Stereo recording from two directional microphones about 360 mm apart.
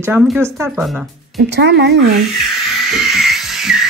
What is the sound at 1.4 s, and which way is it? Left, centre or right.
Music, right.